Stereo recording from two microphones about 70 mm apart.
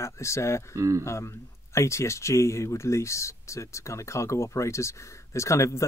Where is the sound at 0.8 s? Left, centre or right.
Right.